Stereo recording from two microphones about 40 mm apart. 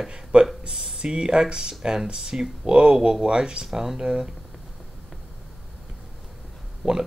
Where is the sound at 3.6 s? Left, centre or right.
Centre.